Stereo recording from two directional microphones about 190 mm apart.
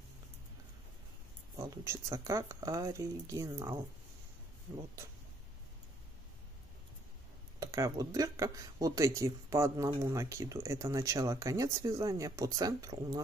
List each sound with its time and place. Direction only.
1.6 s speech: 15° right (ahead or behind)
7.6 s speech: 20° right (ahead or behind)